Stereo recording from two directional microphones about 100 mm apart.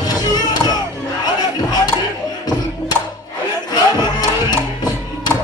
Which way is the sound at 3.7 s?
45° left (ahead or behind).